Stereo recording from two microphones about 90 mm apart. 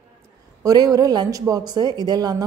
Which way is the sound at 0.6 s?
45° right (ahead or behind).